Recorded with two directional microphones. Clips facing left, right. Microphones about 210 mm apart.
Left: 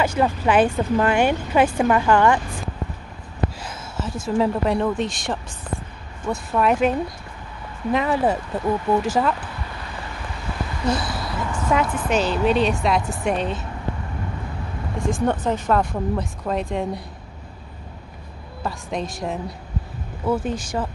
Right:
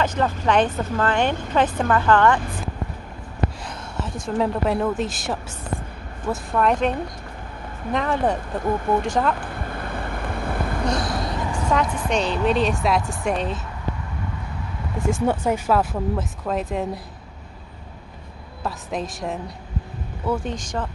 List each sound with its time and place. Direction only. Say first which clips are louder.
0.0 s speech: left 2 dB; 10° left (ahead or behind)
3.6 s speech: left 1 dB; centre (ahead or behind)
7.9 s speech: left 2 dB; 5° left (ahead or behind)
9.4 s vehicle: right 4 dB; 50° right (ahead or behind)
10.9 s a woman's voice: left 4 dB; 5° left (ahead or behind)
15.0 s speech: even; 5° right (ahead or behind)
18.6 s speech: left 1 dB; centre (ahead or behind)